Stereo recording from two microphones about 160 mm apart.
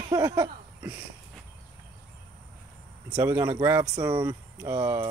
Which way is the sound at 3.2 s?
15° right (ahead or behind).